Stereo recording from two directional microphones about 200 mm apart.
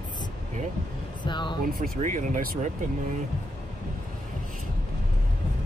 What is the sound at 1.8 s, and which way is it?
Speech, 40° right (ahead or behind).